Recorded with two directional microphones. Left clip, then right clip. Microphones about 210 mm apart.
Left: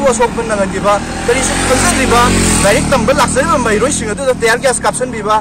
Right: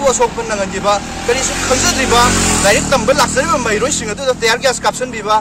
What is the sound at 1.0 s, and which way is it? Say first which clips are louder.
Speech: left 2 dB; 45° left (ahead or behind).